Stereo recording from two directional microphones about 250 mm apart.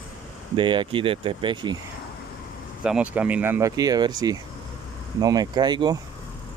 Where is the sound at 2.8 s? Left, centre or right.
Centre.